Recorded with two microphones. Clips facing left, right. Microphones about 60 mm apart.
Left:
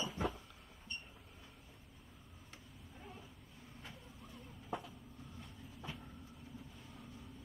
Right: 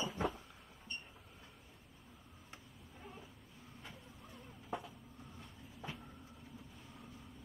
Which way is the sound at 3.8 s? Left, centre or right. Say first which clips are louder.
Even; centre.